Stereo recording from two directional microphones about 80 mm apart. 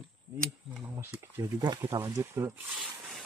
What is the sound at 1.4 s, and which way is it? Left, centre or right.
Speech, right.